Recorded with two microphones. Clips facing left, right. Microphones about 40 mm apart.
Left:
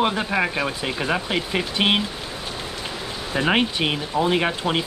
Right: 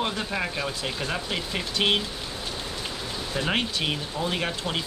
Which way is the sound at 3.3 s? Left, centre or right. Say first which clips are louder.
Left 7 dB; left.